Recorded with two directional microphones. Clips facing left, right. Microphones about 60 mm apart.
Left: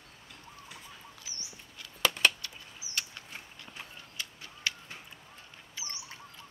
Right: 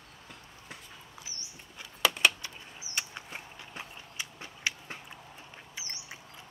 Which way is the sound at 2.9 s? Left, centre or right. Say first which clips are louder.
Right 2 dB; right.